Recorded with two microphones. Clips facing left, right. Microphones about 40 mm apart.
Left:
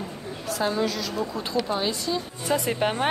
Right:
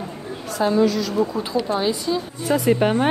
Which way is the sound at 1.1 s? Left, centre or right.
Centre.